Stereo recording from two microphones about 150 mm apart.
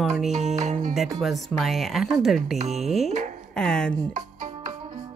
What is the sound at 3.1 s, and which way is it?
Speech, 55° right (ahead or behind).